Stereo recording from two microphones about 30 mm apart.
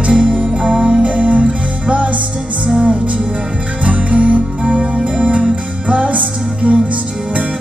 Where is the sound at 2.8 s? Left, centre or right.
Right.